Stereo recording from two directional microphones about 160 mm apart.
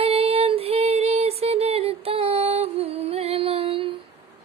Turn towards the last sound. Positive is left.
turn(degrees=-35)  # may be behind; listen again after turning